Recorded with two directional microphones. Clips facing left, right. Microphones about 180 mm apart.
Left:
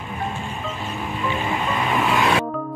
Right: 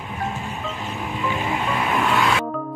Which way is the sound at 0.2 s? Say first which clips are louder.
Right 1 dB; 5° right (ahead or behind).